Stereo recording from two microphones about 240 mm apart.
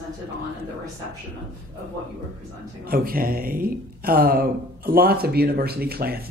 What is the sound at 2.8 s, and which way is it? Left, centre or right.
A woman's voice, right.